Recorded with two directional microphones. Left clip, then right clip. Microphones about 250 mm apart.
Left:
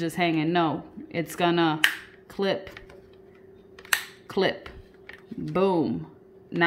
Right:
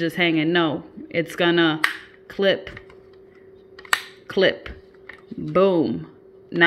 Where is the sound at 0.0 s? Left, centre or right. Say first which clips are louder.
Right 5 dB; centre.